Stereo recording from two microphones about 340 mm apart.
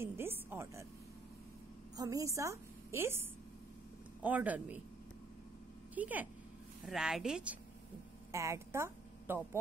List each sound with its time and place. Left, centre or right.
0.0 s music: centre
2.0 s a woman's voice: centre
5.9 s a woman's voice: centre